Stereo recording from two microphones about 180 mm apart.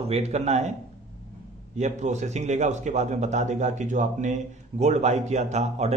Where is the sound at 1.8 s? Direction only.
40° right (ahead or behind).